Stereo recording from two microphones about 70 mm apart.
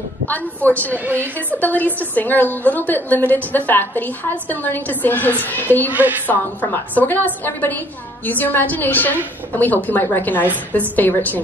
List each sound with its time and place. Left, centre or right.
0.3 s a woman's voice: left
5.9 s a woman's voice: right
6.2 s a woman's voice: left